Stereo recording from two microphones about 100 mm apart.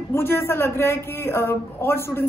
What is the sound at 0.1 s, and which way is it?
A man's voice, 20° left (ahead or behind).